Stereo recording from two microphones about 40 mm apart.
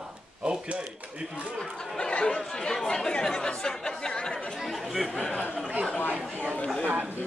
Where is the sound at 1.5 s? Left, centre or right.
Centre.